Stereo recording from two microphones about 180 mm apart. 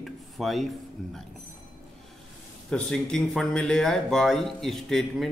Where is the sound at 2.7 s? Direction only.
5° left (ahead or behind).